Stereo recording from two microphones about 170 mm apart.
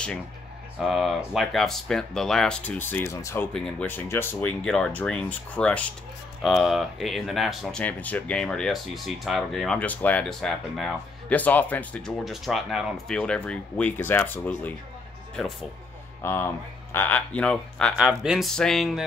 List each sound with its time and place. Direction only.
0.7 s speech: centre (ahead or behind)
16.2 s speech: 15° left (ahead or behind)